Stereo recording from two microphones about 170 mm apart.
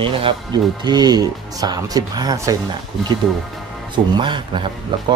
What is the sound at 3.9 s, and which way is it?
Speech, 30° right (ahead or behind).